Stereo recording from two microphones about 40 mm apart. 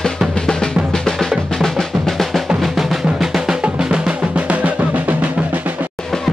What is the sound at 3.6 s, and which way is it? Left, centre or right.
Drum, right.